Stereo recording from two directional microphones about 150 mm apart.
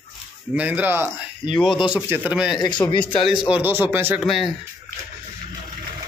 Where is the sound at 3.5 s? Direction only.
15° right (ahead or behind).